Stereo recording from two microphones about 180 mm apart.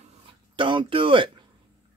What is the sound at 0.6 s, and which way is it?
Speech, 30° right (ahead or behind).